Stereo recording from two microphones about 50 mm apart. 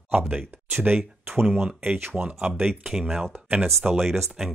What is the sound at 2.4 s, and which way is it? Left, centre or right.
Speech, right.